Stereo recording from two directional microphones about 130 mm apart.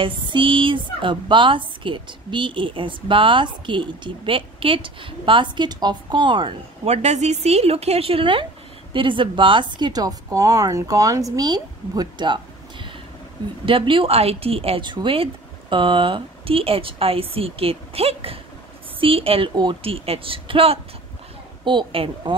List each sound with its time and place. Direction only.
0.0 s a woman's voice: 40° right (ahead or behind)
6.9 s a woman's voice: 60° right (ahead or behind); by 22.3 s 40° right (ahead or behind)